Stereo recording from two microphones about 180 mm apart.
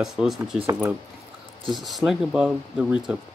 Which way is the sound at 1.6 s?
25° right (ahead or behind).